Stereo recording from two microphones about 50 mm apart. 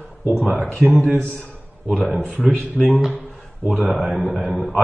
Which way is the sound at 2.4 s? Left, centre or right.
Right.